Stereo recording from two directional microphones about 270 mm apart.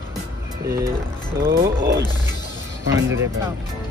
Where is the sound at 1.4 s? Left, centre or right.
Centre.